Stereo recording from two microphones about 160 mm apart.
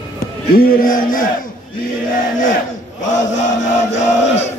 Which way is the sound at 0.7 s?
65° left (ahead or behind).